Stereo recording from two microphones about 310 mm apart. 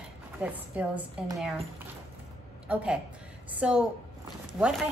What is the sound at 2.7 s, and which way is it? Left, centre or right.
Speech, centre.